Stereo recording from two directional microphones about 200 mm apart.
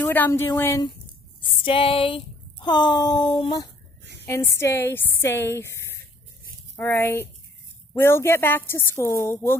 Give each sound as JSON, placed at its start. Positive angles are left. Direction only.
{"t": 0.0, "sound": "a woman's voice", "side_deg": 10}
{"t": 1.6, "sound": "a sound", "side_deg": 25}
{"t": 4.3, "sound": "a woman's voice", "side_deg": 15}